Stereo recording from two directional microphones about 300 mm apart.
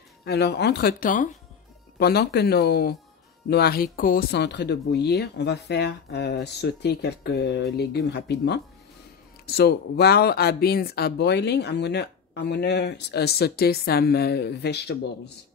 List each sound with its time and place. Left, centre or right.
0.2 s speech: left